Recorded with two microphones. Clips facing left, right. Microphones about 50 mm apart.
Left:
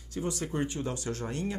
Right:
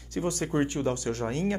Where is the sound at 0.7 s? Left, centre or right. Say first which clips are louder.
Right 5 dB; right.